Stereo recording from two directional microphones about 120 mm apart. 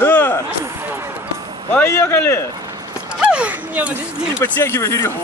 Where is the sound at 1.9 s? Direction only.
20° left (ahead or behind).